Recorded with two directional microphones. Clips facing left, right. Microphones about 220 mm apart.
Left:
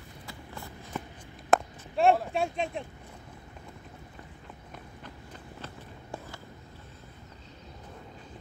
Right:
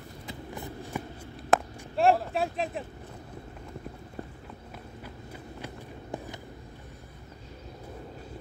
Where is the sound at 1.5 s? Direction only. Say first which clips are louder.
Even; centre (ahead or behind).